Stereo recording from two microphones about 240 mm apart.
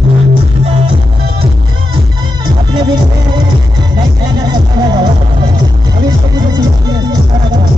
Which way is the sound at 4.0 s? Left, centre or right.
Centre.